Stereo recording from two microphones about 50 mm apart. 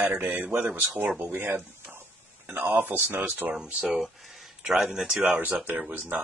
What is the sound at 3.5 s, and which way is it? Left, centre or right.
Speech, right.